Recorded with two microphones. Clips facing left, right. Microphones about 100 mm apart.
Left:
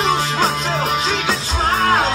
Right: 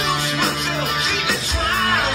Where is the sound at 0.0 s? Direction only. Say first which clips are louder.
Left 4 dB; 35° left (ahead or behind).